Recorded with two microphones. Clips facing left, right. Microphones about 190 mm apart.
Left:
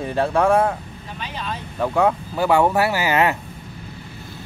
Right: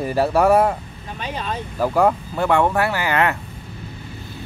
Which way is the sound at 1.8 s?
5° right (ahead or behind).